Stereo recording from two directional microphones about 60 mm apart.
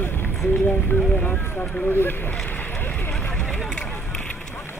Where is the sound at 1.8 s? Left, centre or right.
Left.